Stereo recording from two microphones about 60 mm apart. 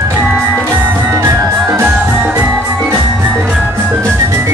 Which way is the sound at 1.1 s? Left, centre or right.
Right.